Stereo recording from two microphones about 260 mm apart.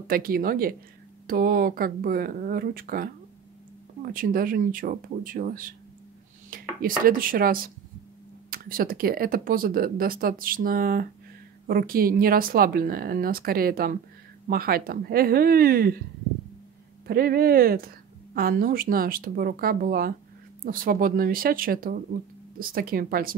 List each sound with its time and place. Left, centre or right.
0.0 s a woman's voice: right
17.1 s a woman's voice: right